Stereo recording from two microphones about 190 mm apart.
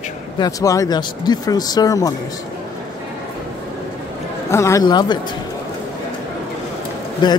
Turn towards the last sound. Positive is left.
turn(degrees=25)  # may be behind; listen again after turning